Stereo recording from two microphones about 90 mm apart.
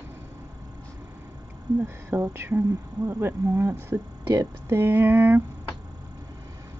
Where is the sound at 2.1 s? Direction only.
25° right (ahead or behind).